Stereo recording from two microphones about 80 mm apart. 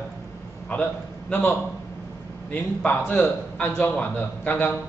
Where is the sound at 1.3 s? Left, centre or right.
Left.